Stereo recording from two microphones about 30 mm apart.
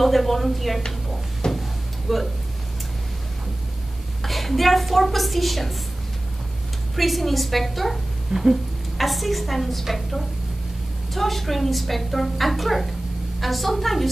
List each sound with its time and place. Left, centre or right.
0.0 s a woman's voice: centre
1.4 s a sound: left
2.1 s a woman's voice: centre
4.2 s a sound: centre
4.9 s a woman's voice: centre
7.0 s a woman's voice: centre
8.3 s a sound: right
8.9 s a woman's voice: centre
11.1 s a woman's voice: centre